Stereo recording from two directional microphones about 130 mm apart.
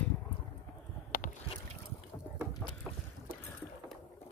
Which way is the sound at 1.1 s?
90° left.